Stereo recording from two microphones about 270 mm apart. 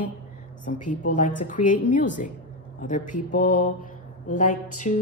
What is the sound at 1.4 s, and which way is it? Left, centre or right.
A woman's voice, left.